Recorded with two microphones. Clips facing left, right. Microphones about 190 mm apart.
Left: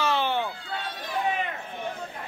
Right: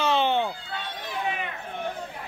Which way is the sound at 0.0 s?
20° right (ahead or behind).